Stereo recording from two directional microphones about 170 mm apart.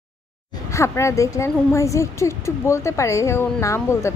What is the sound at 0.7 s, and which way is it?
Speech, 15° left (ahead or behind).